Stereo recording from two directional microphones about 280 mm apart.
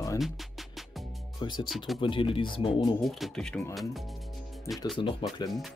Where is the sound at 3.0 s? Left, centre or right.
Centre.